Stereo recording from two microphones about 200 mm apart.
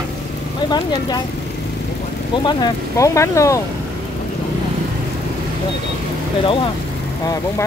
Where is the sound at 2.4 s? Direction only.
20° left (ahead or behind).